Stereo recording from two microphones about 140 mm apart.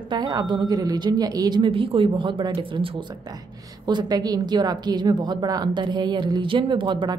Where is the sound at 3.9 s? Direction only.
30° right (ahead or behind).